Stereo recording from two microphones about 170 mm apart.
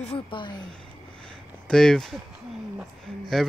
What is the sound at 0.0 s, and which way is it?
Speech, 35° left (ahead or behind).